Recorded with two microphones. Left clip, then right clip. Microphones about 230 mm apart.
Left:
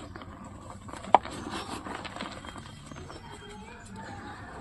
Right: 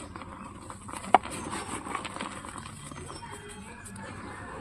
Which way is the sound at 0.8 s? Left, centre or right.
Centre.